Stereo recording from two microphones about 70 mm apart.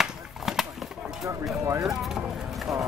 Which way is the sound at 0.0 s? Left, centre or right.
Centre.